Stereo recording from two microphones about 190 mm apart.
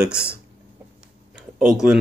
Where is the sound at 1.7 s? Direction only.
5° right (ahead or behind).